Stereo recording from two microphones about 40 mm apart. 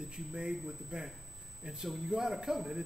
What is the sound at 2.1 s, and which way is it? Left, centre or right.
Speech, centre.